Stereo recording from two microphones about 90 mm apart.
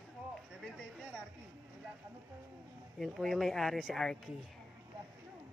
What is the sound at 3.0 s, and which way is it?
Speech, centre (ahead or behind).